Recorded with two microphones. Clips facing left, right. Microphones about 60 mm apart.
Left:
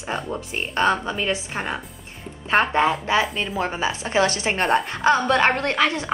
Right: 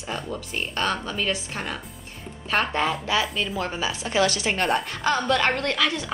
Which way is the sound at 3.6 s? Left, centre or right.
Left.